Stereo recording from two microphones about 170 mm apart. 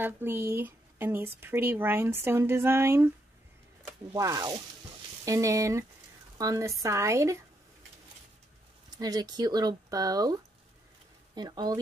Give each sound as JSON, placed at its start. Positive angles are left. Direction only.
{"t": 0.0, "sound": "speech", "side_deg": -15}
{"t": 4.1, "sound": "speech", "side_deg": -20}
{"t": 8.9, "sound": "speech", "side_deg": -25}